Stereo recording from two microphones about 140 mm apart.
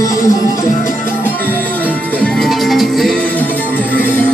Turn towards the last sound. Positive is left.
turn(degrees=0)  # may be behind; listen again after turning